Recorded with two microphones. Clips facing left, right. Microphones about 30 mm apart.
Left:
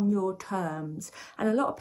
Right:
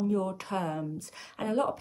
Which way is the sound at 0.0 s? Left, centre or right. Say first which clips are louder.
Left 2 dB; right.